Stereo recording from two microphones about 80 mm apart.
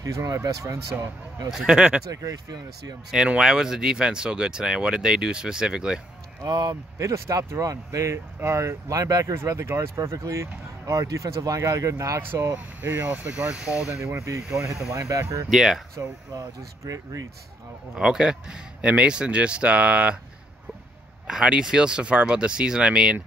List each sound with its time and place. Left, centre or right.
0.0 s speech: right
1.5 s speech: centre
2.0 s speech: right
3.1 s speech: centre
6.4 s speech: right
7.0 s speech: right; by 14.0 s centre
14.0 s speech: right
15.5 s speech: centre
16.0 s speech: right
17.9 s speech: centre
21.3 s speech: centre